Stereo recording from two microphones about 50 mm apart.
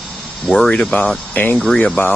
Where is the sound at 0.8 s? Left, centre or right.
Left.